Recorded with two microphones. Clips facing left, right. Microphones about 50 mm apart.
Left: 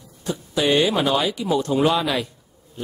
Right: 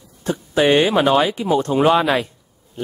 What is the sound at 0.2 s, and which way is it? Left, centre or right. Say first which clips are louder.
Speech: right 5 dB; right.